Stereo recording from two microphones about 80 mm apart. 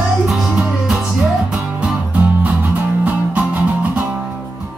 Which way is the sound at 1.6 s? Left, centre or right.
Centre.